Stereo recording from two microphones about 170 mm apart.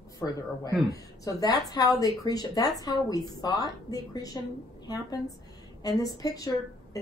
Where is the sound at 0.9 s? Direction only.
20° left (ahead or behind).